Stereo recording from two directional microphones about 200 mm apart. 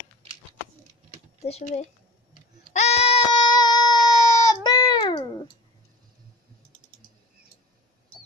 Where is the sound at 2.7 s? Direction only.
30° left (ahead or behind).